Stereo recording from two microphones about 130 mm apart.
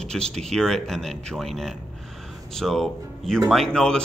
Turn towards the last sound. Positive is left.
turn(degrees=5)  # may be behind; listen again after turning